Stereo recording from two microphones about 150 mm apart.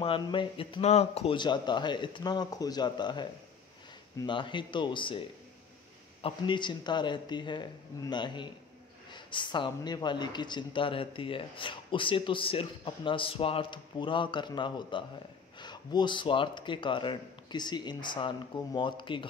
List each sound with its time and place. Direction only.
0.0 s speech: 35° left (ahead or behind)
1.3 s speech: 30° left (ahead or behind)
6.2 s speech: 30° left (ahead or behind)